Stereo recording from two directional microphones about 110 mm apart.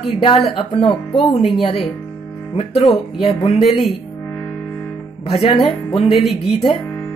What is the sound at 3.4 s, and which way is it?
Speech, 70° left (ahead or behind).